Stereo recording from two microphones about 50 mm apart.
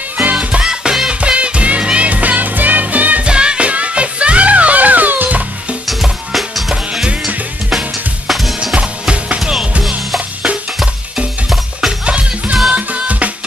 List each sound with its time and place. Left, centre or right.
0.2 s music: right
0.7 s music: centre; by 3.3 s right
3.3 s music: centre; by 5.4 s right
5.9 s music: centre
6.7 s music: centre
8.3 s music: centre
9.0 s music: right
9.4 s music: centre
12.0 s music: right